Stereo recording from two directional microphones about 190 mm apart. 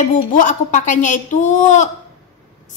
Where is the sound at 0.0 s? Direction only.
40° left (ahead or behind).